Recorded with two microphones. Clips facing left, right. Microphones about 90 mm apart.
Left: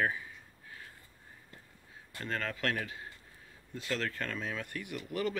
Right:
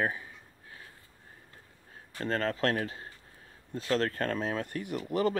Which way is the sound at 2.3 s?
35° right (ahead or behind).